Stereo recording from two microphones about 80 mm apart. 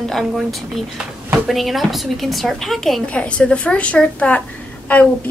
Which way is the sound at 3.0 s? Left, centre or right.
Centre.